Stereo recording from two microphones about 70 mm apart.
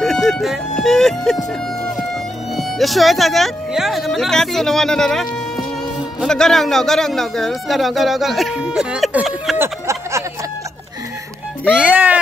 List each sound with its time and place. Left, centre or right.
0.0 s speech: centre
2.5 s a man's voice: centre
9.6 s a sound: right
11.9 s speech: right